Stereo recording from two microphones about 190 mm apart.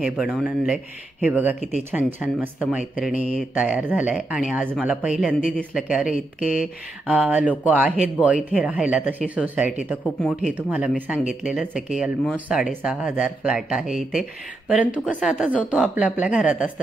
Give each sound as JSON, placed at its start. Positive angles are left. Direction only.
{"t": 0.0, "sound": "speech", "side_deg": -5}
{"t": 6.1, "sound": "speech", "side_deg": 45}
{"t": 6.6, "sound": "speech", "side_deg": -5}